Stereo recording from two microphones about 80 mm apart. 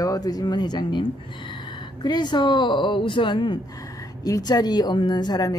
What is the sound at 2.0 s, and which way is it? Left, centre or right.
Speech, left.